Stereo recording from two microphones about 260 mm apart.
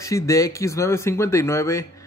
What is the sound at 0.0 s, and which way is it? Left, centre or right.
Speech, centre.